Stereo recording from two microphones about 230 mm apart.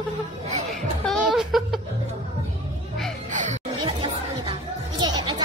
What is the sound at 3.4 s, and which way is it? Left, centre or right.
Music, right.